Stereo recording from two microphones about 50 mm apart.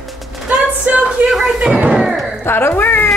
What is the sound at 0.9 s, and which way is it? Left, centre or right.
Chuckle, right.